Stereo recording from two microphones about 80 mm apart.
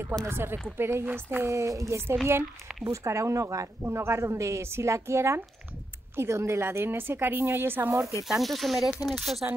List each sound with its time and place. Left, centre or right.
0.3 s a woman's voice: right
8.3 s speech: centre